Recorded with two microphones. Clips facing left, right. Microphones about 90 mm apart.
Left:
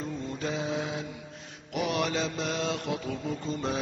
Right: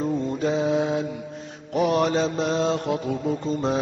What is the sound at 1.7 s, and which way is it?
Mantra, 35° right (ahead or behind).